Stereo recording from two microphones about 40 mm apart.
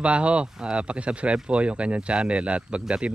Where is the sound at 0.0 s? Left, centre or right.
Right.